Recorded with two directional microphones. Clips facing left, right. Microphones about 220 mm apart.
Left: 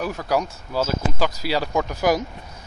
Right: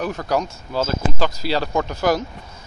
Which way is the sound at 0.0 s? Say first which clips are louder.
Right 1 dB; 5° left (ahead or behind).